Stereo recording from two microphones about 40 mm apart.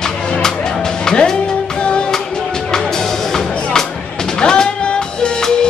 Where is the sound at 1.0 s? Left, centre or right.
Centre.